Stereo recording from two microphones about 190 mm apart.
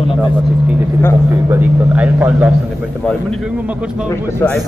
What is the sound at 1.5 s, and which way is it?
Speech, 10° right (ahead or behind).